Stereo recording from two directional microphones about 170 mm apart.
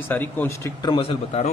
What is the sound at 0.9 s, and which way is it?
Speech, 35° left (ahead or behind).